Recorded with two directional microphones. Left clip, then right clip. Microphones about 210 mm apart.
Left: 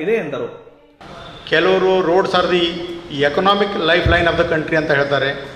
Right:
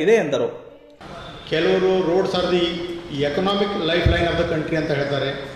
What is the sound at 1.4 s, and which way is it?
A man's voice, centre (ahead or behind).